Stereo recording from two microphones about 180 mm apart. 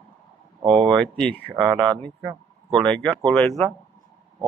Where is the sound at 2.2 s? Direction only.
25° right (ahead or behind).